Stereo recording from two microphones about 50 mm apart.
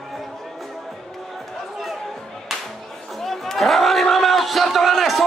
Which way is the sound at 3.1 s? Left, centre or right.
Centre.